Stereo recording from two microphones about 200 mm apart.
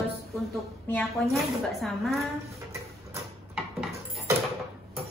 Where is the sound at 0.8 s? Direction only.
5° left (ahead or behind).